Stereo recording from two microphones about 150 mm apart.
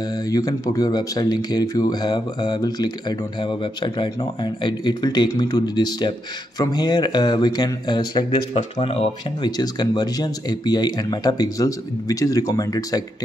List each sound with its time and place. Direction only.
0.1 s speech: 25° left (ahead or behind)
8.5 s speech: 40° left (ahead or behind)
9.6 s speech: 25° left (ahead or behind)